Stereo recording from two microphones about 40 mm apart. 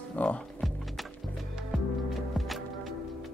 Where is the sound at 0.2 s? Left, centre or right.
Left.